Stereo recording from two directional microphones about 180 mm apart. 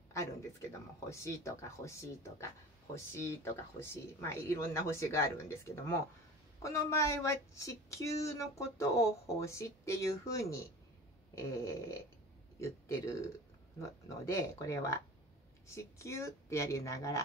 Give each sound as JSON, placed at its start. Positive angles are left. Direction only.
{"t": 0.1, "sound": "speech", "side_deg": 15}